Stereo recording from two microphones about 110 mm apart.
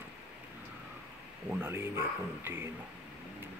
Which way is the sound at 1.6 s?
20° right (ahead or behind).